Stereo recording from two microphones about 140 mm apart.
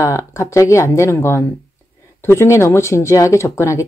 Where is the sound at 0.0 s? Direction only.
20° left (ahead or behind).